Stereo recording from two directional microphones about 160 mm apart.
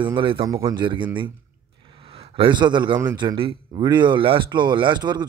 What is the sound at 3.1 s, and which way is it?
Speech, 30° right (ahead or behind).